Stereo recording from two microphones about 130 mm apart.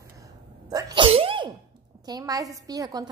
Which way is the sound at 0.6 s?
30° right (ahead or behind).